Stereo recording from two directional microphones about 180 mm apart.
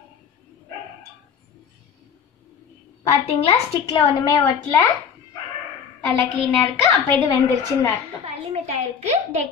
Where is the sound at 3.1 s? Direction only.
30° left (ahead or behind).